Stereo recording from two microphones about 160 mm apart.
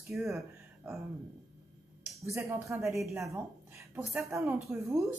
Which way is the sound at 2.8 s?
Centre (ahead or behind).